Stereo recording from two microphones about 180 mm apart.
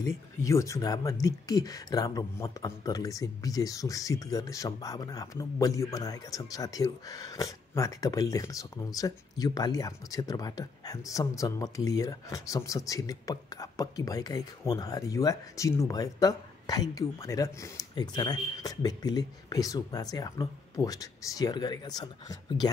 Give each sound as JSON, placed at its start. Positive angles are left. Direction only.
{"t": 0.4, "sound": "speech", "side_deg": 15}